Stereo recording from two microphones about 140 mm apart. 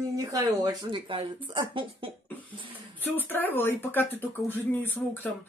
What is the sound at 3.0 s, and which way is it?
Speech, 15° left (ahead or behind).